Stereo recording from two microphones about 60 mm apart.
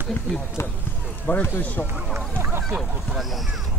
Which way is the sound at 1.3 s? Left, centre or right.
Left.